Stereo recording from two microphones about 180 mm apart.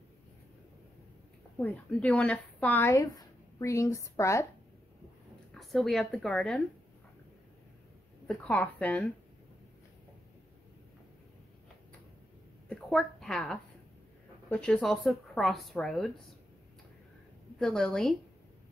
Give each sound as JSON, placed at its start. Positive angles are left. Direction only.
{"t": 1.6, "sound": "speech", "side_deg": 10}
{"t": 5.5, "sound": "a woman's voice", "side_deg": 0}
{"t": 8.3, "sound": "speech", "side_deg": 5}
{"t": 12.6, "sound": "a sound", "side_deg": 5}
{"t": 14.5, "sound": "a woman's voice", "side_deg": 5}
{"t": 17.6, "sound": "a woman's voice", "side_deg": 5}